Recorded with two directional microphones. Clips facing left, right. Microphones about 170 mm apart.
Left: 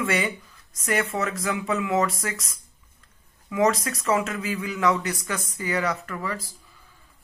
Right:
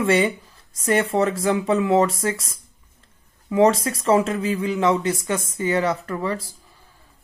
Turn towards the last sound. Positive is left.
turn(degrees=-30)  # may be behind; listen again after turning